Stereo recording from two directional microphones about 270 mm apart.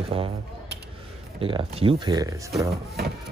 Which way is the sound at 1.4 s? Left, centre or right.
Centre.